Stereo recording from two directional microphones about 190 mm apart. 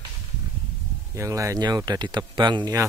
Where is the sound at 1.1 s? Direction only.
15° right (ahead or behind).